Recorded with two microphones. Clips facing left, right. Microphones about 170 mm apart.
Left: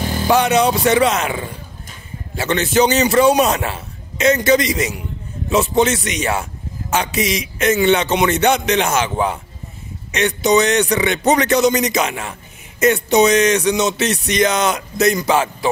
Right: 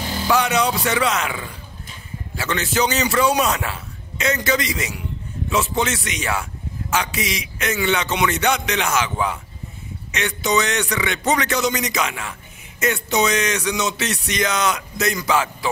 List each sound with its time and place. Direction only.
0.3 s speech: 25° left (ahead or behind)
2.3 s speech: 25° left (ahead or behind)